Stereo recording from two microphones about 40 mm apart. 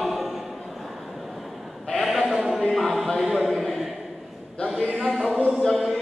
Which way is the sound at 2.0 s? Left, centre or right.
Centre.